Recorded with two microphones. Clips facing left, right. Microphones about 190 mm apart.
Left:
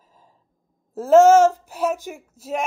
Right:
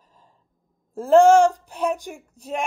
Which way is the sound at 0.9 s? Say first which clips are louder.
Left 1 dB; 5° left (ahead or behind).